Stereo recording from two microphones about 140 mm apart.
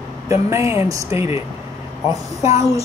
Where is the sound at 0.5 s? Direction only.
20° right (ahead or behind).